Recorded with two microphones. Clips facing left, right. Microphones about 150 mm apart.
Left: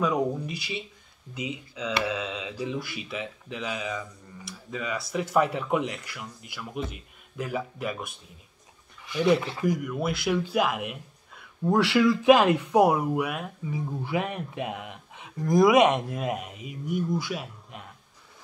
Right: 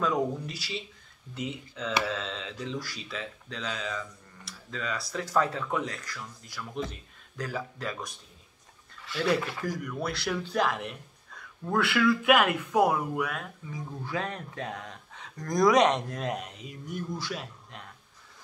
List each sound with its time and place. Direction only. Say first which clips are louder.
0.0 s speech: left 2 dB; centre (ahead or behind)
1.4 s speech: left 2 dB; 5° left (ahead or behind); by 9.8 s 20° left (ahead or behind)
9.8 s speech: left 5 dB; centre (ahead or behind)
11.6 s speech: left 4 dB; 20° left (ahead or behind)